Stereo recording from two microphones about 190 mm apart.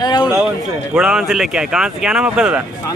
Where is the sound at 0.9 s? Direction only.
5° right (ahead or behind).